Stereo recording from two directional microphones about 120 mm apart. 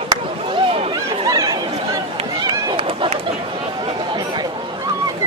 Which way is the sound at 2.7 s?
45° right (ahead or behind).